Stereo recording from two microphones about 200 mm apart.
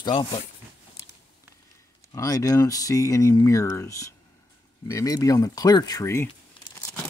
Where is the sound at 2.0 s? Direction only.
15° left (ahead or behind).